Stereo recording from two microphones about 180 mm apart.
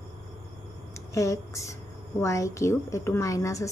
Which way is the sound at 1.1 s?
15° left (ahead or behind).